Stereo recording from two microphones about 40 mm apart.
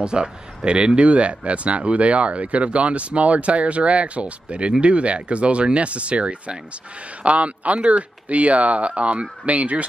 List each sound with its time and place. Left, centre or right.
0.0 s speech: right